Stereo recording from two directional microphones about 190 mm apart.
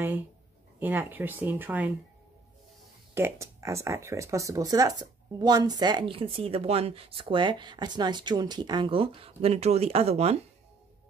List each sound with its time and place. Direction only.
0.7 s speech: 10° right (ahead or behind)
3.2 s speech: 15° right (ahead or behind); by 10.4 s 35° right (ahead or behind)